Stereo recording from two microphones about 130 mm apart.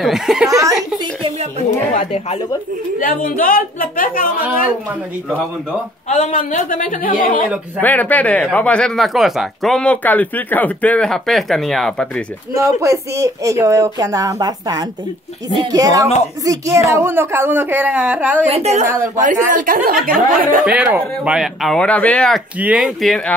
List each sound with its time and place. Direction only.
0.0 s speech: 5° right (ahead or behind)
0.5 s speech: 25° right (ahead or behind)
2.0 s speech: 60° left (ahead or behind)
3.0 s a woman's voice: 90° left
6.0 s a woman's voice: 70° left (ahead or behind); by 7.4 s 90° left
7.8 s speech: 15° left (ahead or behind)
12.5 s a woman's voice: 20° right (ahead or behind)
18.5 s a woman's voice: 55° right (ahead or behind)
19.2 s a woman's voice: 85° right
20.6 s speech: 10° right (ahead or behind); by 22.4 s 10° left (ahead or behind)
22.6 s speech: 10° right (ahead or behind)